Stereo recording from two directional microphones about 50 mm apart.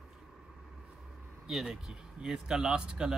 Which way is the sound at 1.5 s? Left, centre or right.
Centre.